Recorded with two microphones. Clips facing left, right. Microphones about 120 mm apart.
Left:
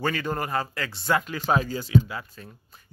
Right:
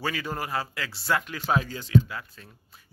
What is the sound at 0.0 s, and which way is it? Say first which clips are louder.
Speech: left 4 dB; 5° right (ahead or behind).